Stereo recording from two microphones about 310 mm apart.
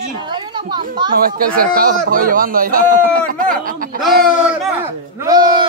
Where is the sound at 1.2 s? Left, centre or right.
Right.